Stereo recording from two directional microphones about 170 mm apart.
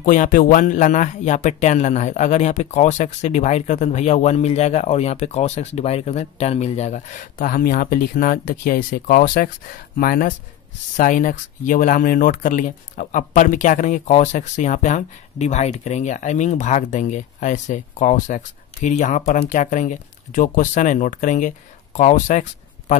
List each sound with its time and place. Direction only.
0.0 s speech: 55° left (ahead or behind)